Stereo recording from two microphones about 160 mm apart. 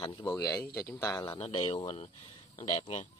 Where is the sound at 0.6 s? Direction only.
75° left (ahead or behind).